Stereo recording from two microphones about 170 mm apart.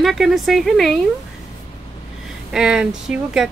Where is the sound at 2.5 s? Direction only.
5° right (ahead or behind).